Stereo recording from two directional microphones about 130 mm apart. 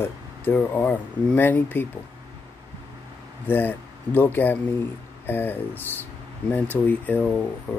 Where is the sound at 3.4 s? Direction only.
15° left (ahead or behind).